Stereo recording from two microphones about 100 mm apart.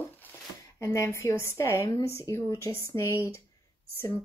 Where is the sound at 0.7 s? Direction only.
30° left (ahead or behind).